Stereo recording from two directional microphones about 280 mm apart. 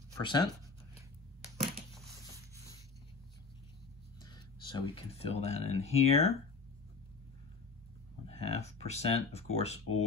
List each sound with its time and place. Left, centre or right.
0.2 s speech: centre
4.2 s speech: centre
8.3 s speech: left